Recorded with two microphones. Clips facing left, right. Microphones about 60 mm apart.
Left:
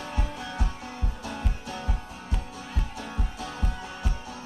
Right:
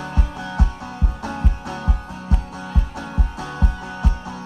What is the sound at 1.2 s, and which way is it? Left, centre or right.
Music, right.